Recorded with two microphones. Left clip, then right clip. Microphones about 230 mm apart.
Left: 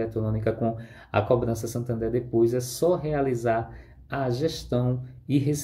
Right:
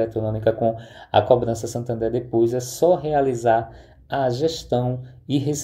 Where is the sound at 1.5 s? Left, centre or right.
Centre.